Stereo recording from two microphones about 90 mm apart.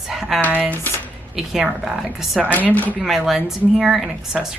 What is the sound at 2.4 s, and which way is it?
Speech, 20° left (ahead or behind).